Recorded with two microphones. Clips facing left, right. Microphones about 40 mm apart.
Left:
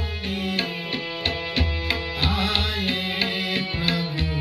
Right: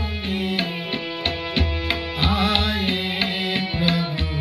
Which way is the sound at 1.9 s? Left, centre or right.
Centre.